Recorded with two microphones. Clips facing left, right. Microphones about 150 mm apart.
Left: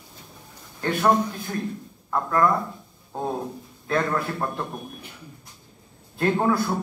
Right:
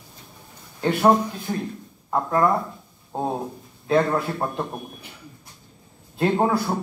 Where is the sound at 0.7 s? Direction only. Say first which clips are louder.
Right 3 dB; 20° right (ahead or behind).